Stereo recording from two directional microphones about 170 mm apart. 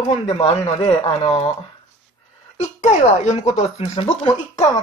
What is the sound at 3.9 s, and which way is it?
Music, 25° left (ahead or behind).